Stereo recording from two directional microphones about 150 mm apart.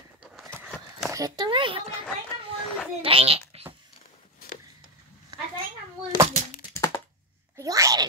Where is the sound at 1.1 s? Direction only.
25° right (ahead or behind).